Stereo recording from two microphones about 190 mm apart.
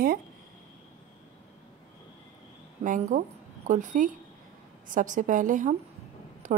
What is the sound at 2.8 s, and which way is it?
A woman's voice, 45° right (ahead or behind).